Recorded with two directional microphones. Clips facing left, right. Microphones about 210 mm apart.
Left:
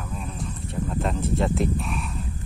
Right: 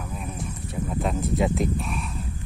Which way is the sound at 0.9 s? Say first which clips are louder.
Right 1 dB; 5° right (ahead or behind).